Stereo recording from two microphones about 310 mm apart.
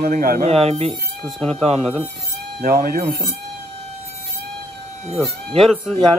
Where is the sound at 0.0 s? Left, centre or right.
Right.